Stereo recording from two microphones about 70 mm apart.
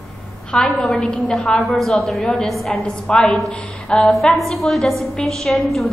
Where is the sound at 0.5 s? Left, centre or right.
Centre.